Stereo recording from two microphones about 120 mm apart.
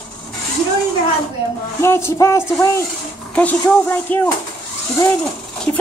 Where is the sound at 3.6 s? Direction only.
15° left (ahead or behind).